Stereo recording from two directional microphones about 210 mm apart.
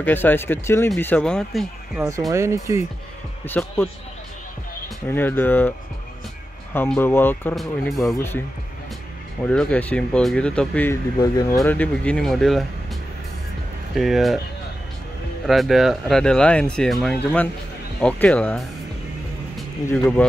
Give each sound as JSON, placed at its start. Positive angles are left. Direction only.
{"t": 0.0, "sound": "speech", "side_deg": 10}
{"t": 2.0, "sound": "speech", "side_deg": -15}
{"t": 3.4, "sound": "speech", "side_deg": 10}
{"t": 5.0, "sound": "speech", "side_deg": 10}
{"t": 6.7, "sound": "speech", "side_deg": 10}
{"t": 9.5, "sound": "speech", "side_deg": 5}
{"t": 11.1, "sound": "speech", "side_deg": 20}
{"t": 11.5, "sound": "speech", "side_deg": 10}
{"t": 13.9, "sound": "speech", "side_deg": 0}
{"t": 15.4, "sound": "speech", "side_deg": 0}
{"t": 19.9, "sound": "speech", "side_deg": 5}